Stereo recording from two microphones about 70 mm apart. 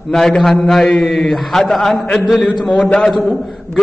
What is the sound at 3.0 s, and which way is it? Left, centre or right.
Speech, centre.